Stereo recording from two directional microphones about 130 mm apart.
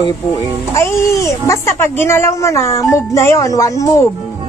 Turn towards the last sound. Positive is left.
turn(degrees=25)  # may be behind; listen again after turning